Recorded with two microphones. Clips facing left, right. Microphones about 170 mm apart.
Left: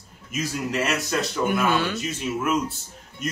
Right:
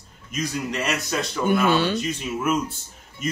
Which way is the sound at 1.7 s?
30° right (ahead or behind).